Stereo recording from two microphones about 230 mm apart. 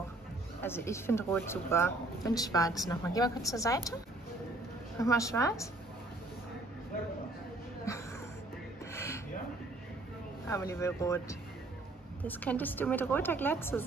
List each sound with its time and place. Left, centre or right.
0.6 s a woman's voice: centre
4.9 s a woman's voice: centre
8.9 s a sound: centre
10.4 s a woman's voice: centre